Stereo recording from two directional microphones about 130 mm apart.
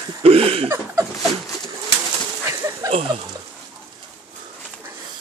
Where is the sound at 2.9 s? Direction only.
45° right (ahead or behind).